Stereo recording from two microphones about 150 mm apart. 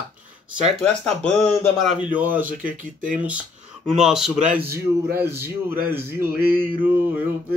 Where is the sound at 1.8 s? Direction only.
10° right (ahead or behind).